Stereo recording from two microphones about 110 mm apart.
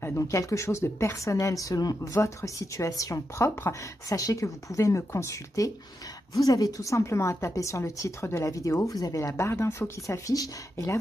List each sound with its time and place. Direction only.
0.0 s a woman's voice: 25° left (ahead or behind)